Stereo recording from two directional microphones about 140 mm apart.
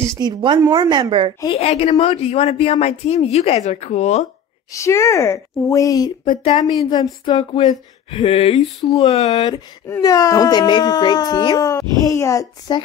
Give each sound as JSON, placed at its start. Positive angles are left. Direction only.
{"t": 0.2, "sound": "a woman's voice", "side_deg": -35}
{"t": 1.6, "sound": "speech", "side_deg": 50}
{"t": 4.7, "sound": "speech", "side_deg": 20}
{"t": 6.2, "sound": "speech", "side_deg": 40}
{"t": 10.0, "sound": "speech", "side_deg": 25}